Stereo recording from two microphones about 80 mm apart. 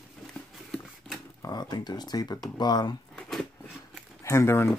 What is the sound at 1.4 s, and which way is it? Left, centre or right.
Speech, left.